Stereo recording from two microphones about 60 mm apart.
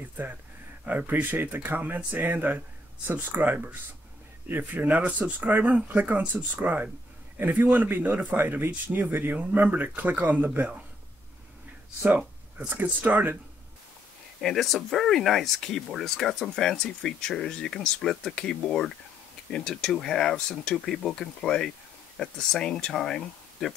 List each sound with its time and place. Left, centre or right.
0.2 s speech: right
12.5 s speech: right
14.4 s speech: centre